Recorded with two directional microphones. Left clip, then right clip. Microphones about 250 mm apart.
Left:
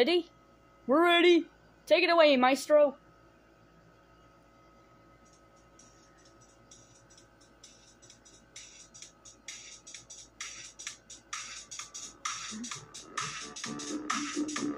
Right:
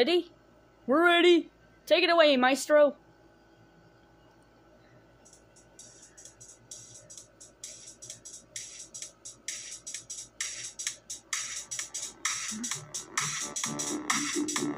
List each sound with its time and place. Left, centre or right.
0.0 s a woman's voice: centre
7.6 s music: right